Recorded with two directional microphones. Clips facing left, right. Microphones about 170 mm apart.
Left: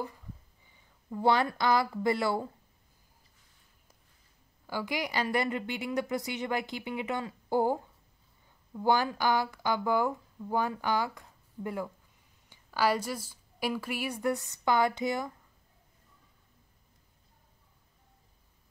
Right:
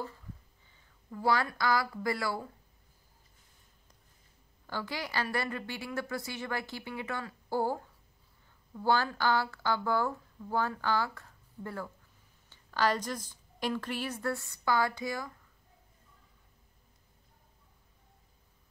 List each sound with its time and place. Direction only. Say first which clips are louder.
0.7 s speech: left 5 dB; 20° left (ahead or behind)
4.6 s a woman's voice: left 4 dB; 15° left (ahead or behind)